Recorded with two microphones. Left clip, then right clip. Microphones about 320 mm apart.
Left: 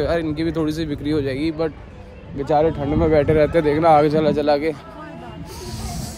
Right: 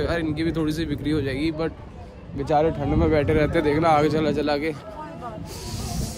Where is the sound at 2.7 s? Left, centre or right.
Left.